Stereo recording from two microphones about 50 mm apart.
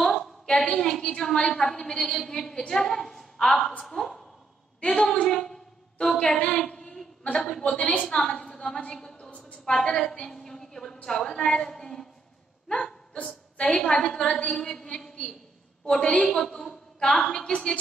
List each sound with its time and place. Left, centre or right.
0.6 s a woman's voice: centre
4.7 s a woman's voice: centre
6.7 s a sound: centre
7.3 s a woman's voice: centre
12.6 s hiccup: centre
13.6 s a woman's voice: centre
16.0 s a woman's voice: left
16.3 s a woman's voice: centre
17.2 s a woman's voice: left